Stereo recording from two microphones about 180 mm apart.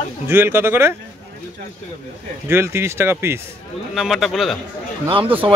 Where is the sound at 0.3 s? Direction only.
15° right (ahead or behind).